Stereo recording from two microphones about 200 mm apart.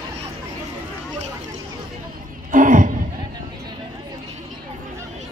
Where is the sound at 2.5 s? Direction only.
40° right (ahead or behind).